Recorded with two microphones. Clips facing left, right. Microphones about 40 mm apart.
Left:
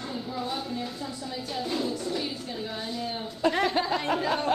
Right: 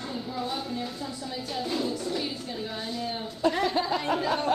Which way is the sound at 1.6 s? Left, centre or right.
Centre.